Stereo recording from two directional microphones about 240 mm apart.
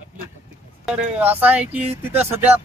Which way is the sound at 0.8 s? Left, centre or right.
Centre.